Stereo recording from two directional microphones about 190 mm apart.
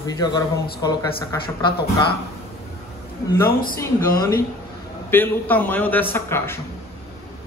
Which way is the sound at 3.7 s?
20° left (ahead or behind).